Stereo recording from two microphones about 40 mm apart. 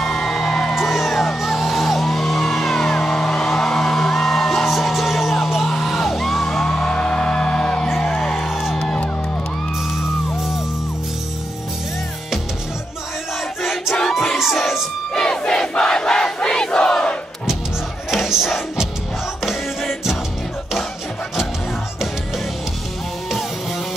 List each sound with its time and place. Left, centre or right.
0.0 s music: centre
8.7 s music: centre
13.6 s crowd: centre
15.1 s crowd: left
18.1 s music: centre